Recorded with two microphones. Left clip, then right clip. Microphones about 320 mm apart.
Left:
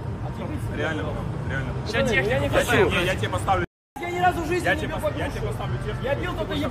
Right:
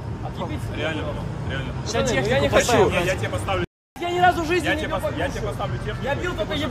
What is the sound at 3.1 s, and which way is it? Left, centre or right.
Speech, centre.